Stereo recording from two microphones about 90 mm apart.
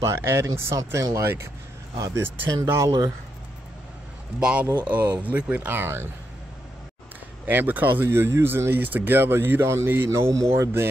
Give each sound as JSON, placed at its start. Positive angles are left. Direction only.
{"t": 0.0, "sound": "speech", "side_deg": -30}
{"t": 4.4, "sound": "speech", "side_deg": -10}
{"t": 7.4, "sound": "speech", "side_deg": -20}